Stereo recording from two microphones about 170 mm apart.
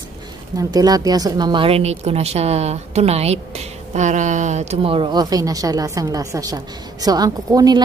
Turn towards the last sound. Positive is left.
turn(degrees=-20)  # may be behind; listen again after turning